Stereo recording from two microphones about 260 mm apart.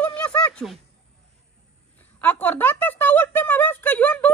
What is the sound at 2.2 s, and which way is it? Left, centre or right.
Speech, centre.